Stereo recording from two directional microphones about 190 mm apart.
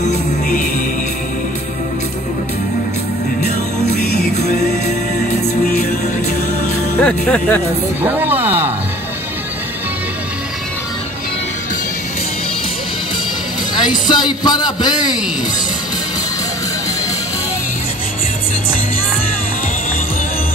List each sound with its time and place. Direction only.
0.1 s music: 40° left (ahead or behind)
7.0 s speech: 5° left (ahead or behind)
8.0 s a sound: 10° right (ahead or behind)
13.7 s a man's voice: 25° left (ahead or behind)